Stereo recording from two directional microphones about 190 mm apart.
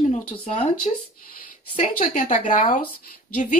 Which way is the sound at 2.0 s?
40° left (ahead or behind).